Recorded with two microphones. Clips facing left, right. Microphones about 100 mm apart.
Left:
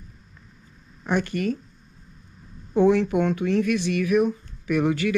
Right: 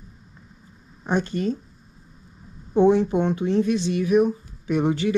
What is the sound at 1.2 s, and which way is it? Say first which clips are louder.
Speech: right 1 dB; 65° left (ahead or behind).